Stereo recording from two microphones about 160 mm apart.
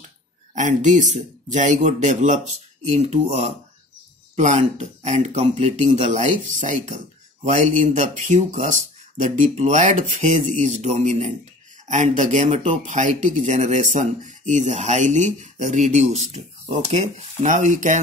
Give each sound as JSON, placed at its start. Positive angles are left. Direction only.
{"t": 0.6, "sound": "speech", "side_deg": -50}